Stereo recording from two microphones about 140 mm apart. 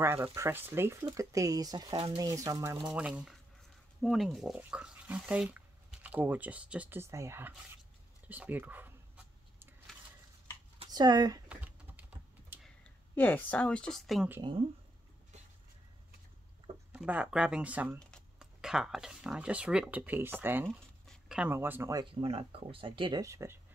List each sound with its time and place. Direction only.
0.0 s speech: 20° right (ahead or behind); by 2.1 s 35° right (ahead or behind)
2.1 s speech: 25° right (ahead or behind)
2.8 s speech: 5° right (ahead or behind)
8.3 s dog: 10° right (ahead or behind)
10.9 s speech: 30° right (ahead or behind)
11.4 s typing: 10° right (ahead or behind)
12.6 s speech: 10° left (ahead or behind)
16.9 s speech: 10° right (ahead or behind)
21.1 s a sound: 5° right (ahead or behind)
21.5 s speech: 15° right (ahead or behind)
22.2 s speech: 45° right (ahead or behind)
23.2 s speech: 20° right (ahead or behind)